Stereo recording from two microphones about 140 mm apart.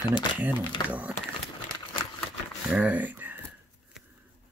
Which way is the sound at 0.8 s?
10° right (ahead or behind).